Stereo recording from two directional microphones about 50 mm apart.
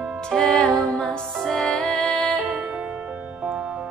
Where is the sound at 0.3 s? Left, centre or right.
Centre.